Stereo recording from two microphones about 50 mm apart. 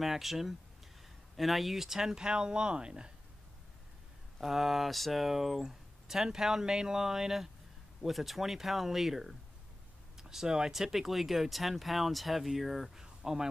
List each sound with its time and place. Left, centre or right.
0.0 s speech: centre
4.4 s speech: centre